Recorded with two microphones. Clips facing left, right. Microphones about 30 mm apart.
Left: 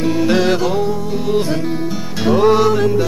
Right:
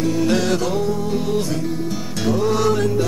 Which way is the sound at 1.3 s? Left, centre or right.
Left.